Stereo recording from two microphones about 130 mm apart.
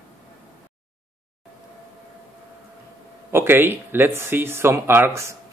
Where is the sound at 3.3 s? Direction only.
20° right (ahead or behind).